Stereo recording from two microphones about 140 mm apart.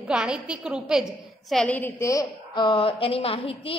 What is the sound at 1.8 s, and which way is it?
A woman's voice, 15° left (ahead or behind).